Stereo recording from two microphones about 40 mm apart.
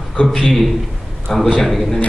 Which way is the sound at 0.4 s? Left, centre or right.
Centre.